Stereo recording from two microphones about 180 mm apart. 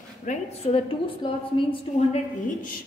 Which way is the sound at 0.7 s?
30° left (ahead or behind).